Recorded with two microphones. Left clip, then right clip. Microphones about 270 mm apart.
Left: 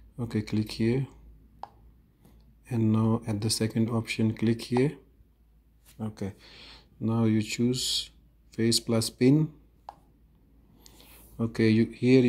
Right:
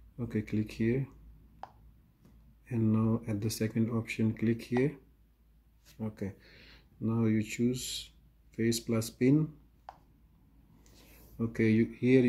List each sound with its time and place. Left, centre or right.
0.2 s speech: centre
2.6 s speech: centre
5.9 s speech: centre
11.3 s speech: centre